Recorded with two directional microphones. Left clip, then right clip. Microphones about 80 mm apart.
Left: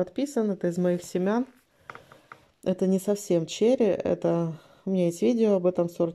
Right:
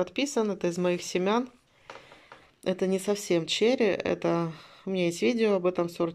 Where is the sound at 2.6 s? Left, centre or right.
Left.